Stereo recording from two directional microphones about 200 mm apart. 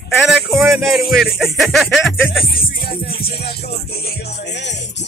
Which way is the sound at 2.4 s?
50° left (ahead or behind).